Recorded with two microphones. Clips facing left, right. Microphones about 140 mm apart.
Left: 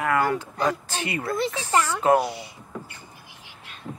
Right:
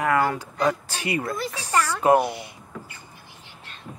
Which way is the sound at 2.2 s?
55° right (ahead or behind).